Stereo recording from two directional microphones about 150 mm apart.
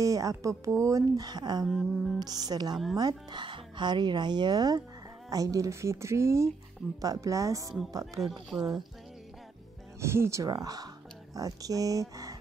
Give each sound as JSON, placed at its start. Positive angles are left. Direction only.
{"t": 0.0, "sound": "speech", "side_deg": -20}
{"t": 1.7, "sound": "speech", "side_deg": 0}
{"t": 2.1, "sound": "speech", "side_deg": -25}
{"t": 2.7, "sound": "speech", "side_deg": 0}
{"t": 3.0, "sound": "speech", "side_deg": -30}
{"t": 8.2, "sound": "speech", "side_deg": 0}
{"t": 9.9, "sound": "speech", "side_deg": -15}